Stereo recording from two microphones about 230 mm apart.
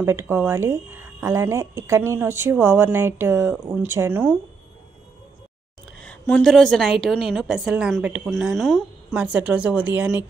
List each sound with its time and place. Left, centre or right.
0.0 s speech: centre
5.9 s a woman's voice: centre